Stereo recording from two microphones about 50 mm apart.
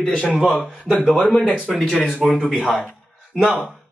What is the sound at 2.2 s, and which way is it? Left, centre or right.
Speech, centre.